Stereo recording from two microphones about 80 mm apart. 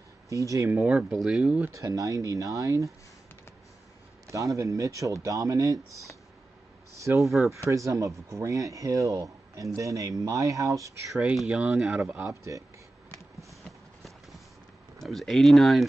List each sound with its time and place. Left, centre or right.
0.3 s speech: right
0.7 s speech: centre
1.1 s speech: centre
1.8 s speech: right
4.3 s speech: right
6.9 s a sound: right
7.4 s speech: right
11.4 s speech: centre
12.3 s speech: right
13.5 s clip-clop: centre
15.0 s speech: centre